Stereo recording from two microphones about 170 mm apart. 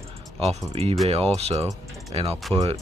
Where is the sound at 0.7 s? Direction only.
35° right (ahead or behind).